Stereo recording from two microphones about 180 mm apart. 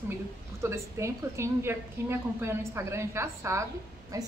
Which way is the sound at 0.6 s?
15° right (ahead or behind).